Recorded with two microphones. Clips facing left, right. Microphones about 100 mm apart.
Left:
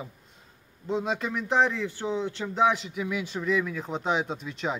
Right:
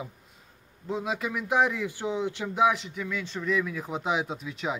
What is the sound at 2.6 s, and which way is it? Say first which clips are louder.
Speech: left 1 dB; centre (ahead or behind).